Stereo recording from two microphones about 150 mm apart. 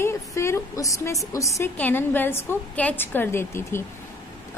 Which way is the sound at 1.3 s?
20° left (ahead or behind).